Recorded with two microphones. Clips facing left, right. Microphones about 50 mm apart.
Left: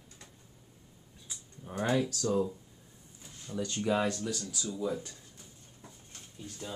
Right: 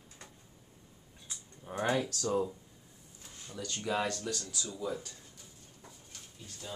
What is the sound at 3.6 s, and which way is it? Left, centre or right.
Speech, centre.